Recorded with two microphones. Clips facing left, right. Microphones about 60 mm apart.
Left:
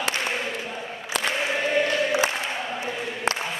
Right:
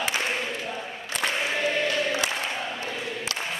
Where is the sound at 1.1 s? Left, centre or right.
Left.